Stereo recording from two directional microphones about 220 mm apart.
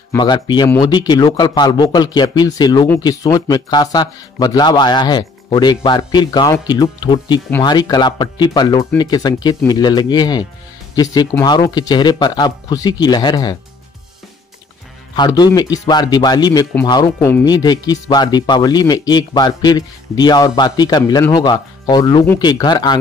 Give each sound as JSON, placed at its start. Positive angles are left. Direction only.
{"t": 0.1, "sound": "speech", "side_deg": 20}
{"t": 15.1, "sound": "a man's voice", "side_deg": 20}